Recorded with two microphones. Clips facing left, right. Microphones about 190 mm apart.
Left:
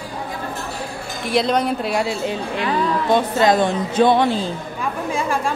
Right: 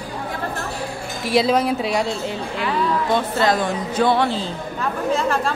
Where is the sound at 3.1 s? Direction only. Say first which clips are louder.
Left 5 dB; 20° left (ahead or behind).